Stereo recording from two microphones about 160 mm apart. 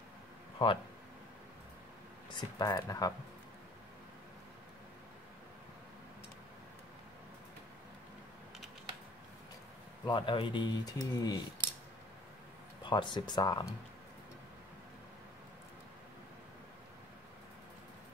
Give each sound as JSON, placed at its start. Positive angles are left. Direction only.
{"t": 0.6, "sound": "speech", "side_deg": 30}
{"t": 2.3, "sound": "speech", "side_deg": 25}
{"t": 10.0, "sound": "speech", "side_deg": 30}
{"t": 12.8, "sound": "speech", "side_deg": 30}